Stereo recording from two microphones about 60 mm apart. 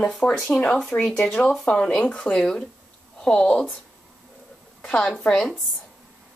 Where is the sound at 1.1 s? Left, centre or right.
Left.